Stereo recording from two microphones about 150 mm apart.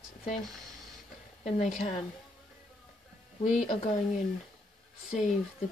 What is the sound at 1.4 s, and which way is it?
Speech, 50° left (ahead or behind).